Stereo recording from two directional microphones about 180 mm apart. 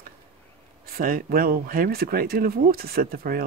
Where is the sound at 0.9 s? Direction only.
55° right (ahead or behind).